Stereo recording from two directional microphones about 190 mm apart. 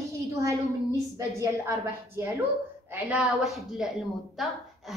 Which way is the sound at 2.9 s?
5° right (ahead or behind).